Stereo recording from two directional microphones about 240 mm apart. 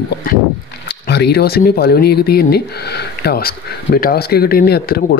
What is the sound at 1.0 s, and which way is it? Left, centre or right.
Speech, left.